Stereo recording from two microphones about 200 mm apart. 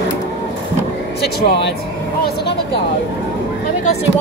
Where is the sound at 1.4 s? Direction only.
60° left (ahead or behind).